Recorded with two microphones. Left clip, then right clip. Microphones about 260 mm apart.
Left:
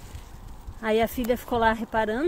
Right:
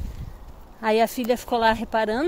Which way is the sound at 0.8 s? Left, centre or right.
Centre.